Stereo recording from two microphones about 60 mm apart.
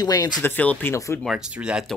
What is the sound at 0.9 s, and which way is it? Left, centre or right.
Speech, left.